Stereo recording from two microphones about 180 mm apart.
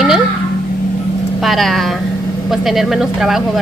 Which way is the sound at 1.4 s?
Centre (ahead or behind).